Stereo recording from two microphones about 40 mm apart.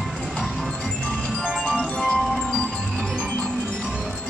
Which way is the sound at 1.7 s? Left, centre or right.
Left.